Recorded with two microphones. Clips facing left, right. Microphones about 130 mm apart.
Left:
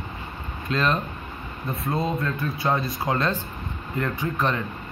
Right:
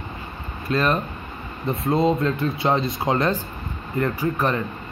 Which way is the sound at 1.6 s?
25° right (ahead or behind).